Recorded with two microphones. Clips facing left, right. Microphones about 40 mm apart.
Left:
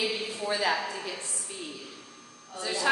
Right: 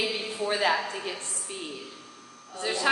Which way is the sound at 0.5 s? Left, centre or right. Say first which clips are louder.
Right 2 dB; right.